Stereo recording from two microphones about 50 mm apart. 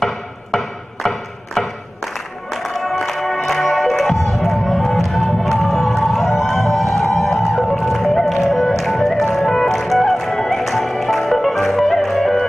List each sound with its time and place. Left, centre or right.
0.0 s music: centre